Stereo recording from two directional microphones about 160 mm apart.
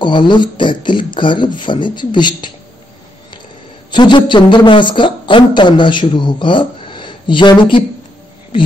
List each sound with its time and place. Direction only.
0.0 s a man's voice: 30° left (ahead or behind)
3.9 s a man's voice: 30° left (ahead or behind)